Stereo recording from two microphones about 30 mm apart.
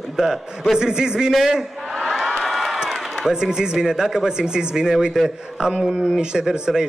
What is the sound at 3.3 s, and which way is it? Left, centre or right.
Speech, right.